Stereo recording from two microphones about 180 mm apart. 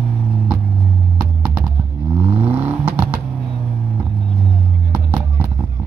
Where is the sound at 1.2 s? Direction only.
5° right (ahead or behind).